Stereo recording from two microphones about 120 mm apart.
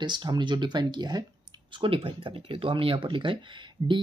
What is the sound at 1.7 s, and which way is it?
Speech, 45° right (ahead or behind).